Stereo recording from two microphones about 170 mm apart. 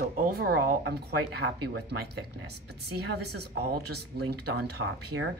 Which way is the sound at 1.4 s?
80° right.